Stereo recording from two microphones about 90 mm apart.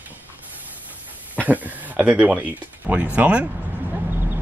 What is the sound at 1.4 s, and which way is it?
Speech, 15° right (ahead or behind).